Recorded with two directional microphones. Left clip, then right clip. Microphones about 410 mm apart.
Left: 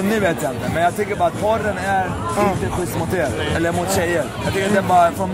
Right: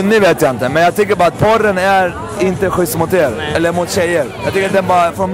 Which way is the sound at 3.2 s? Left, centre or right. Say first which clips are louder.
Right 6 dB; centre.